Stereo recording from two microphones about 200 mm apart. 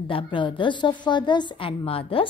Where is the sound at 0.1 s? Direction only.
25° left (ahead or behind).